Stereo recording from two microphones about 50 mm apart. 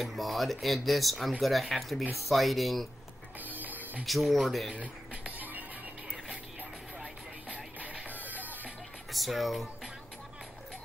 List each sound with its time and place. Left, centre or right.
0.0 s speech: centre
3.3 s music: right
4.0 s speech: centre
5.1 s music: right
7.4 s music: right
9.1 s speech: centre